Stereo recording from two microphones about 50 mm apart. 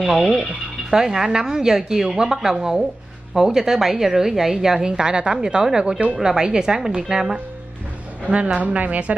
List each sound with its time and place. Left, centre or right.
0.0 s a woman's voice: centre
8.5 s speech: right